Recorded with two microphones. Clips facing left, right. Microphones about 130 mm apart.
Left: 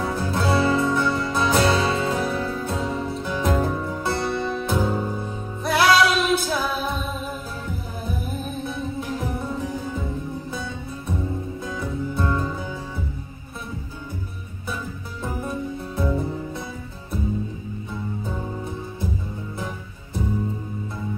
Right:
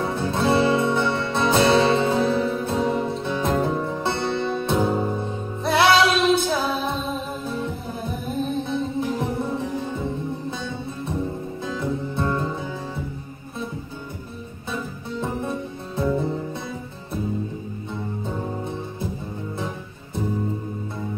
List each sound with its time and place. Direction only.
0.0 s music: 25° right (ahead or behind)
12.2 s music: 25° right (ahead or behind)